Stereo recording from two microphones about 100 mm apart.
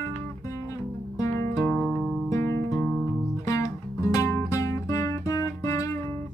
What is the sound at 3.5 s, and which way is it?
Music, 35° left (ahead or behind).